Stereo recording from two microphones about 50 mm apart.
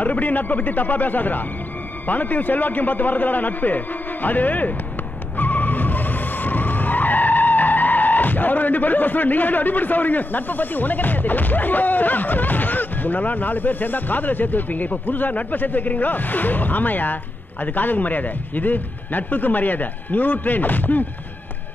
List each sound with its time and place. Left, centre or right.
0.0 s a man's voice: left
5.4 s skidding: left